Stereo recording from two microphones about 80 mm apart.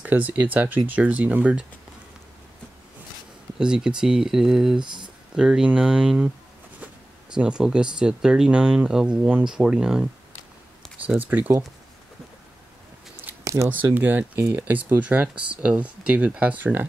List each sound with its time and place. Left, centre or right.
0.0 s speech: right
3.5 s speech: centre
4.7 s speech: right
5.3 s speech: centre
7.3 s speech: centre
11.1 s speech: right
13.4 s a sound: right
13.9 s speech: right